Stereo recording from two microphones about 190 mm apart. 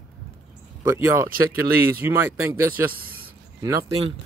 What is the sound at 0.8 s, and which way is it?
Speech, 15° right (ahead or behind).